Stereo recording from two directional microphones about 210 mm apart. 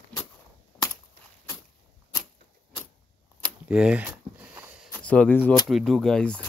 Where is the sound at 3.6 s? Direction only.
5° right (ahead or behind).